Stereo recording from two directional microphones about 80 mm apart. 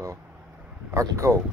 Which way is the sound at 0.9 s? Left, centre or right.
Right.